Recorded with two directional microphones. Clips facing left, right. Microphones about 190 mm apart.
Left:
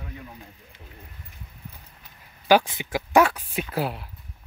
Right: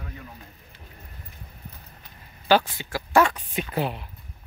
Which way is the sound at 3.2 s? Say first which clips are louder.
Right 1 dB; 5° left (ahead or behind).